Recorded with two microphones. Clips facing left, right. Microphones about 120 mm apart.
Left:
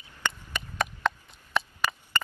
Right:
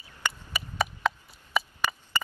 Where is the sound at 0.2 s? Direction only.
5° right (ahead or behind).